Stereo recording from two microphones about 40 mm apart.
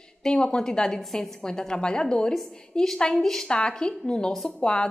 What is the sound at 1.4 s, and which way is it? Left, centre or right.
A woman's voice, centre.